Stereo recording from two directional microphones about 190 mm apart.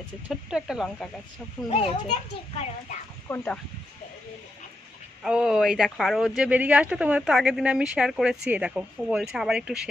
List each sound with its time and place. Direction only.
0.3 s speech: centre (ahead or behind)
1.7 s a child's voice: 30° left (ahead or behind)
3.3 s speech: 15° left (ahead or behind)
5.2 s speech: 5° right (ahead or behind)